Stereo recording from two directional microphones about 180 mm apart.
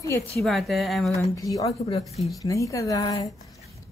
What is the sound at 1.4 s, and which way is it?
A woman's voice, 20° left (ahead or behind).